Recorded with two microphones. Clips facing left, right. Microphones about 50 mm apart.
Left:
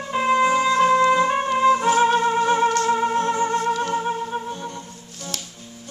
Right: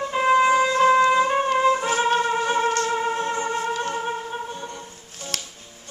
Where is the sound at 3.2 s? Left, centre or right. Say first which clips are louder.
Left 4 dB; centre.